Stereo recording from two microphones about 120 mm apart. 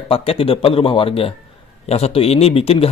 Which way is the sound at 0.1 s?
55° left (ahead or behind).